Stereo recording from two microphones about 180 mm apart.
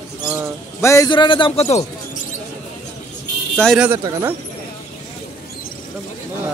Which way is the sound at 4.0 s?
20° right (ahead or behind).